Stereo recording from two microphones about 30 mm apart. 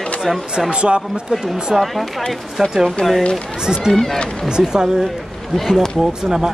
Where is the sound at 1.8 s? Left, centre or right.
Centre.